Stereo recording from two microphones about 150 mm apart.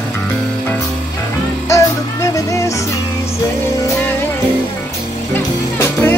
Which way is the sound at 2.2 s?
20° left (ahead or behind).